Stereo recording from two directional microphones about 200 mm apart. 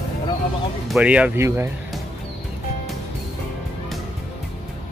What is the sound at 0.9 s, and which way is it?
Speech, 5° right (ahead or behind).